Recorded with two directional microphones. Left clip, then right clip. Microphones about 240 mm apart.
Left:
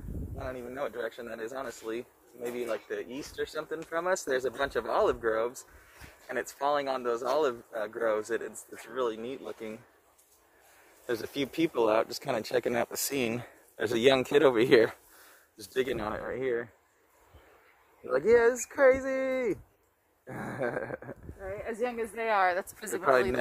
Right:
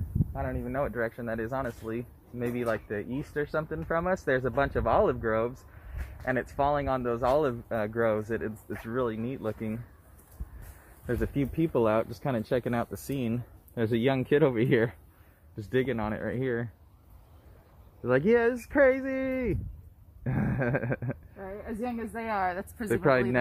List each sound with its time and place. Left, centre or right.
0.5 s speech: centre
11.1 s speech: left
18.1 s speech: centre
21.6 s speech: left